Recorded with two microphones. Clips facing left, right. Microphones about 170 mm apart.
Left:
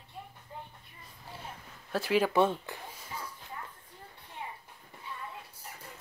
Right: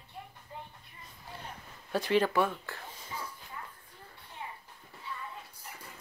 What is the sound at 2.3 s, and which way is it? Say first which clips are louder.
Speech: left 3 dB; 20° left (ahead or behind).